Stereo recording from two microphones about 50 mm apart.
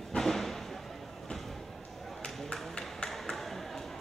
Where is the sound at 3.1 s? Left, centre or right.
Centre.